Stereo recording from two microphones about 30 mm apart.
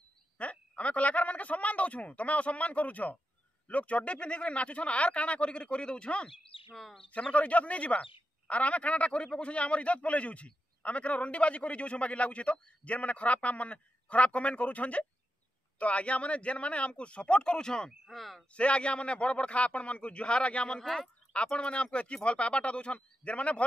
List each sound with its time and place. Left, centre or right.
0.4 s a woman's voice: left
6.7 s speech: centre
7.1 s speech: left
17.6 s speech: left
18.0 s speech: centre
18.5 s speech: left
20.8 s speech: centre
21.3 s speech: left